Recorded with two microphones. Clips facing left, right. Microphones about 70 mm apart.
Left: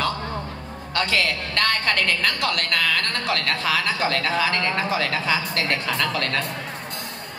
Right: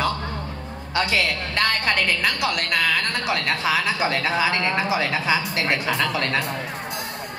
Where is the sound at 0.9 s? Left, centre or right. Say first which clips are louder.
Right 1 dB; centre.